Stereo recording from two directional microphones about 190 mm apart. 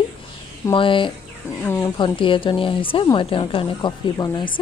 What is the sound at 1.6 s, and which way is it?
Speech, 15° left (ahead or behind).